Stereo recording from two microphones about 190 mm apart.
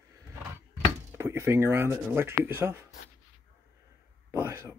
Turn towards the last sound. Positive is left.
turn(degrees=-15)  # may be behind; listen again after turning